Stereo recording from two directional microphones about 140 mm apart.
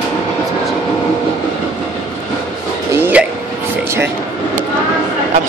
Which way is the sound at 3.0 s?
10° right (ahead or behind).